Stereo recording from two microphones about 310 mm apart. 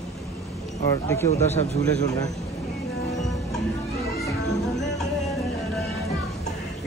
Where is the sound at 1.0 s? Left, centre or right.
Centre.